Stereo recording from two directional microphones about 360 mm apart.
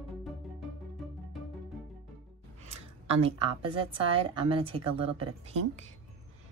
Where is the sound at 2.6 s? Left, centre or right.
Centre.